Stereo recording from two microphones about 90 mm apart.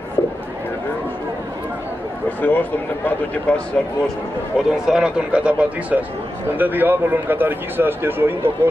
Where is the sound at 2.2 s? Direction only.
20° left (ahead or behind).